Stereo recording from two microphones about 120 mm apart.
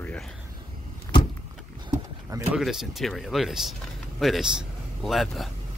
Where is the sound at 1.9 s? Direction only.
25° right (ahead or behind).